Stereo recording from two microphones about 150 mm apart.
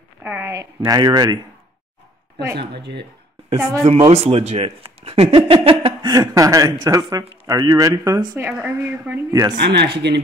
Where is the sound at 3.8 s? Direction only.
45° right (ahead or behind); by 9.1 s 10° right (ahead or behind).